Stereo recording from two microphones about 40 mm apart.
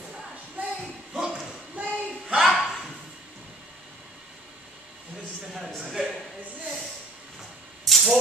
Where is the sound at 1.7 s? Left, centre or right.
Right.